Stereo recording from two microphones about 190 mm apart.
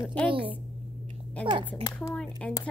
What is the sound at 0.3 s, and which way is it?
A woman's voice, 30° right (ahead or behind).